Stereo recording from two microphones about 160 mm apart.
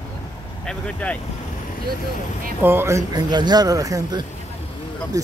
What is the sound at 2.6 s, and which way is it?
Speech, 15° right (ahead or behind).